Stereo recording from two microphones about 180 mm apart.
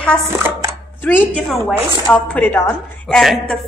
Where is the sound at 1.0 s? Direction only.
10° left (ahead or behind).